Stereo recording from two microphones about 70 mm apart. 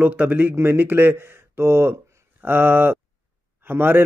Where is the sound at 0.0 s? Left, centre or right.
Right.